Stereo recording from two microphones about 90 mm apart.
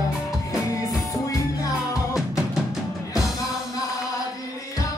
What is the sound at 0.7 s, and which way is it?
Music, 35° left (ahead or behind).